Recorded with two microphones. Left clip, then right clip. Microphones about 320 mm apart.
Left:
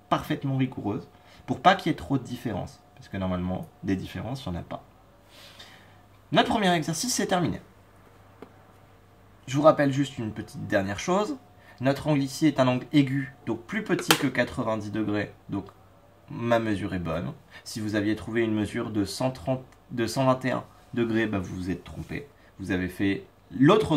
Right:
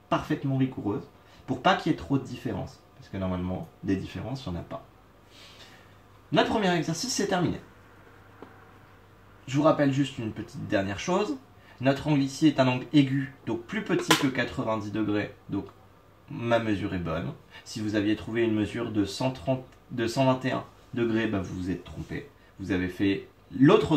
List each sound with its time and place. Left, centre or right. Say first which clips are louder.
1.4 s speech: left 3 dB; centre
6.3 s speech: left 2 dB; centre
9.5 s speech: left 3 dB; centre